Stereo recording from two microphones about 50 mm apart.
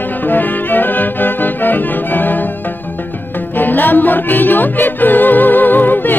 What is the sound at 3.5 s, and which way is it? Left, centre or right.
Music, left.